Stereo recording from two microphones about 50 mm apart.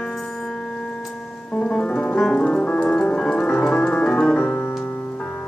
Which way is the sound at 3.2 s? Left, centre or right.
Centre.